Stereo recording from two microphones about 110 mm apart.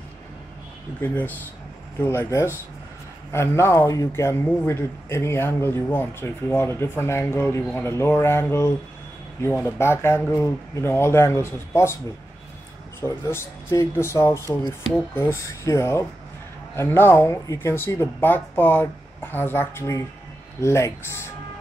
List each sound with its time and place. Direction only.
1.0 s speech: 15° left (ahead or behind)
13.0 s speech: 25° left (ahead or behind)